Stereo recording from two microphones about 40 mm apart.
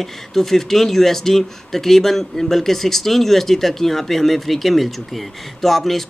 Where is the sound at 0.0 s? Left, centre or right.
Centre.